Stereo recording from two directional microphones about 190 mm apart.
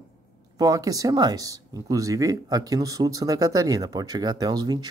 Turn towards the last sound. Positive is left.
turn(degrees=-20)  # may be behind; listen again after turning